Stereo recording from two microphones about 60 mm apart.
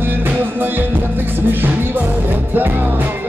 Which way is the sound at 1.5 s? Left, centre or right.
Right.